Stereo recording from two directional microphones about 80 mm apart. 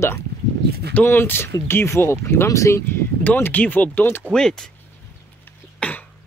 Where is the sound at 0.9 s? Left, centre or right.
Left.